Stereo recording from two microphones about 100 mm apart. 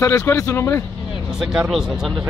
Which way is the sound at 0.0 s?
30° left (ahead or behind).